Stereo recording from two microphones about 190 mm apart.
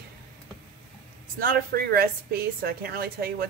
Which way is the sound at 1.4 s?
50° right (ahead or behind).